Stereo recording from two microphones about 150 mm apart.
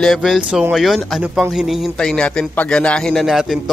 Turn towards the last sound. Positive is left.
turn(degrees=0)  # may be behind; listen again after turning